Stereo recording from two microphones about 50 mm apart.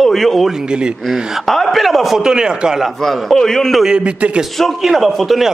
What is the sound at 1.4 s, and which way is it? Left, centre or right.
Speech, centre.